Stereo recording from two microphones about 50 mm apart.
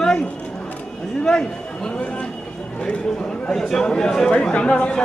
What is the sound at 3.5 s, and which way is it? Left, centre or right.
Speech, centre.